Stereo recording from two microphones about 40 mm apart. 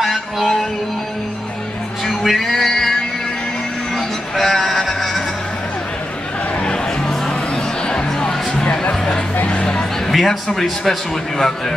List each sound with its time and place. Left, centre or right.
0.0 s music: centre
2.0 s music: centre
3.9 s music: centre
7.8 s music: centre
10.1 s a man's voice: centre